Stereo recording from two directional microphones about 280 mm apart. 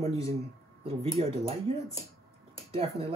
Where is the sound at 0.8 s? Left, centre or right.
Centre.